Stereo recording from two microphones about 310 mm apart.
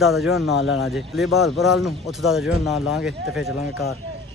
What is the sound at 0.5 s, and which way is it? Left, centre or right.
Speech, left.